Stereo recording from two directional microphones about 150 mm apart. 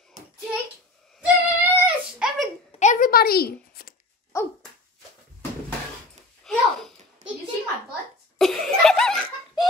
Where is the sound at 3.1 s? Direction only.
90° left.